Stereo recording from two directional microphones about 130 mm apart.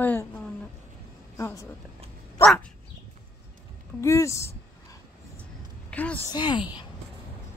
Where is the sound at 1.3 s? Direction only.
25° left (ahead or behind).